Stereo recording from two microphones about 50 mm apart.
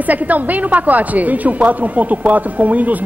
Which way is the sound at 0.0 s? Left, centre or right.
Right.